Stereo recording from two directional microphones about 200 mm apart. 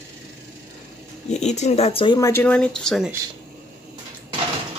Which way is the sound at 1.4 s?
35° left (ahead or behind).